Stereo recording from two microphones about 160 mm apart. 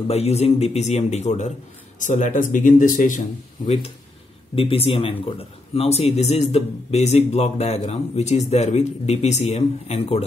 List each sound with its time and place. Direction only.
0.1 s a man's voice: 40° left (ahead or behind)
3.6 s a man's voice: 40° left (ahead or behind)